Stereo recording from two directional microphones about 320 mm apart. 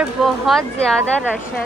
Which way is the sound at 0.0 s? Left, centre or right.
Centre.